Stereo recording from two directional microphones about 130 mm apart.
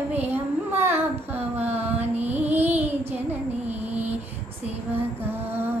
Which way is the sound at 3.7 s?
10° right (ahead or behind).